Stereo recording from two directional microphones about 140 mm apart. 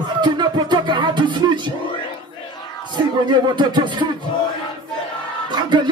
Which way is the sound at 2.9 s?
35° right (ahead or behind).